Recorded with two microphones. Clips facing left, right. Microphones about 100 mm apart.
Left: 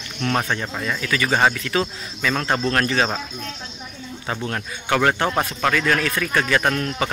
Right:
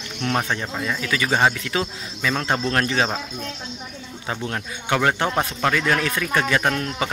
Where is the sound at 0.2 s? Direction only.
15° right (ahead or behind).